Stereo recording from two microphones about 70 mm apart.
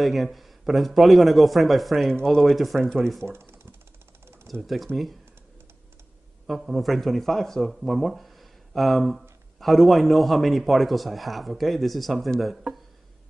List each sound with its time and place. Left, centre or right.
0.0 s a man's voice: centre
3.3 s typewriter: right
4.6 s a man's voice: centre
6.4 s a man's voice: centre